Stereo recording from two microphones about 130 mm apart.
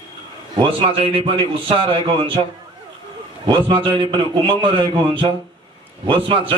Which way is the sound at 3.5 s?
40° right (ahead or behind).